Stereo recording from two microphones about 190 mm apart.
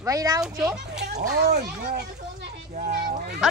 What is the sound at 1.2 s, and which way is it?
A child's voice, 55° right (ahead or behind).